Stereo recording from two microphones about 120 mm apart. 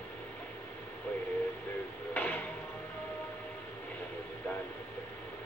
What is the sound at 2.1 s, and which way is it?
Music, 15° left (ahead or behind).